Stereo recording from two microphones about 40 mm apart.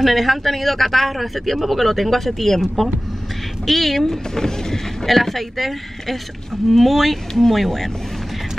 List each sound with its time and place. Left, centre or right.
0.0 s speech: centre
3.6 s speech: centre